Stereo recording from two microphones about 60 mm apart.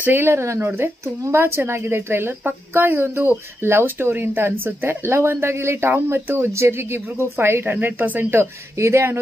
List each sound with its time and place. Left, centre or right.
0.0 s speech: right
8.7 s speech: right